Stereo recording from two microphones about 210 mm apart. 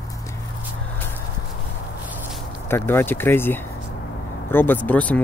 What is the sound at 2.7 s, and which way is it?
Speech, 10° left (ahead or behind).